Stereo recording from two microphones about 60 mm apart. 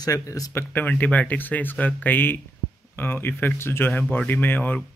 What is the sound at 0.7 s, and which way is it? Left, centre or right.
Speech, left.